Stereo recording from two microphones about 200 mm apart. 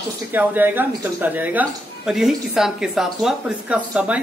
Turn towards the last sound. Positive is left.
turn(degrees=-5)  # may be behind; listen again after turning